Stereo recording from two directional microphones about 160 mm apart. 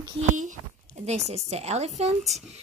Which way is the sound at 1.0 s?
45° right (ahead or behind).